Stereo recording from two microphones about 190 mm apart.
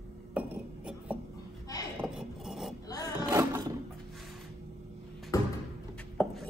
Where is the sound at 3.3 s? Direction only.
15° right (ahead or behind).